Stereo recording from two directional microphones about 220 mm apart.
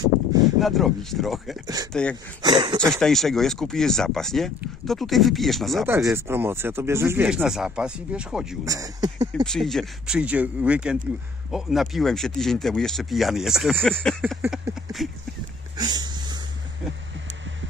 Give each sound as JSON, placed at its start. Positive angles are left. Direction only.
{"t": 0.6, "sound": "speech", "side_deg": 0}
{"t": 2.4, "sound": "speech", "side_deg": -20}
{"t": 2.9, "sound": "speech", "side_deg": 0}
{"t": 5.9, "sound": "speech", "side_deg": -10}
{"t": 8.6, "sound": "speech", "side_deg": -15}
{"t": 9.5, "sound": "speech", "side_deg": 0}
{"t": 14.4, "sound": "a sound", "side_deg": -5}
{"t": 15.8, "sound": "a sound", "side_deg": -20}